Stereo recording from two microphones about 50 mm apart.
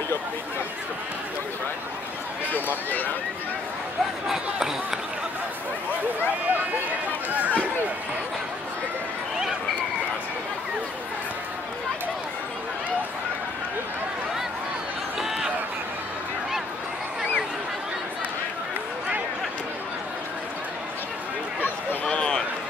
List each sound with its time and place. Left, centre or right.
2.5 s speech: left
4.3 s speech: centre
7.2 s a sound: right
15.1 s run: centre
22.0 s run: centre